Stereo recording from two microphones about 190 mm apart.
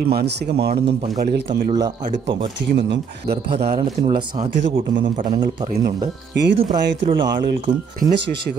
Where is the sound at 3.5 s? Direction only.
35° right (ahead or behind).